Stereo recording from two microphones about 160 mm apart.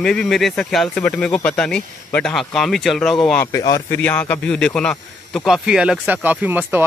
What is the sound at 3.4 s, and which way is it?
Speech, 20° left (ahead or behind).